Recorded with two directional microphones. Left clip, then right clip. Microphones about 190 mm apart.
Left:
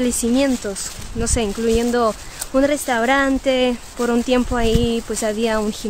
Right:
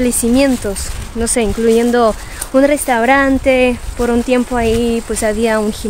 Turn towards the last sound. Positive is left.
turn(degrees=5)  # may be behind; listen again after turning